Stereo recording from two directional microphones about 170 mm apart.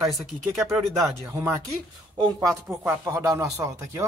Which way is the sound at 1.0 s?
15° right (ahead or behind).